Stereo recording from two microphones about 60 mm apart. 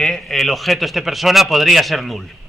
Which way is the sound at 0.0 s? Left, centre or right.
Centre.